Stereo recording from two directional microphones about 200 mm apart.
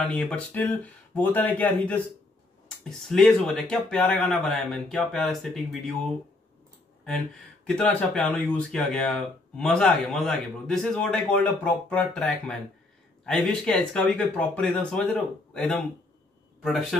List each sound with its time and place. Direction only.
0.0 s speech: 5° left (ahead or behind)
7.6 s speech: 5° left (ahead or behind)